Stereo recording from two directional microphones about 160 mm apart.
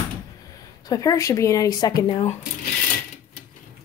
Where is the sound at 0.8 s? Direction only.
20° left (ahead or behind).